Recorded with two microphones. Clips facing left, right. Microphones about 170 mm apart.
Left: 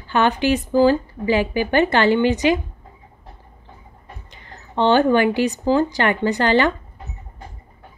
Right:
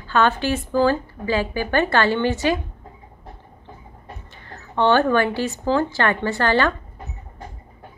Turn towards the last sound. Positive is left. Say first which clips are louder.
# left 2 dB
turn(degrees=20)  # may be behind; listen again after turning